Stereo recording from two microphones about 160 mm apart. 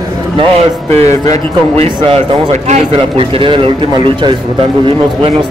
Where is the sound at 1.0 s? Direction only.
20° left (ahead or behind).